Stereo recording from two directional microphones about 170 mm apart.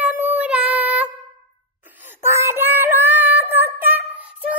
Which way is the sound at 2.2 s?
15° right (ahead or behind).